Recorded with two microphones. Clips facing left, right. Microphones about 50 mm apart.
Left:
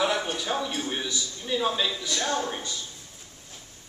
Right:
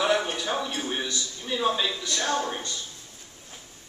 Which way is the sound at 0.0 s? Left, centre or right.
Centre.